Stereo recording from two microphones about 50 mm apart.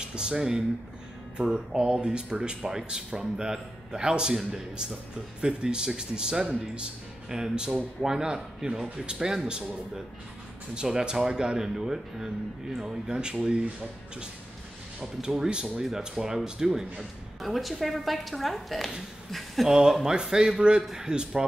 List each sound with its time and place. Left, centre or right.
0.0 s speech: centre
10.7 s speech: centre
15.2 s speech: centre
17.4 s speech: centre
19.7 s speech: centre